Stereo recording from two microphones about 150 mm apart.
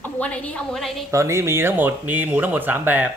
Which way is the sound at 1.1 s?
15° right (ahead or behind).